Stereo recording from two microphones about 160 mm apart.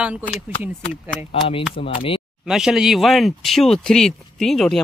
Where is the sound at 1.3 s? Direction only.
35° left (ahead or behind).